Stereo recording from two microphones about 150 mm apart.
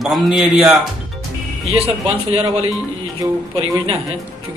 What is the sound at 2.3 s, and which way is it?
Speech, 40° right (ahead or behind).